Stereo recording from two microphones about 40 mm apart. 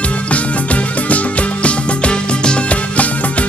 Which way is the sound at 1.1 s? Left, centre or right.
Left.